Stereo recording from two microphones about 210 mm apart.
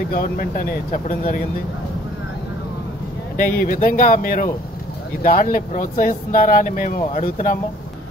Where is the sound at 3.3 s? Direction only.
45° left (ahead or behind).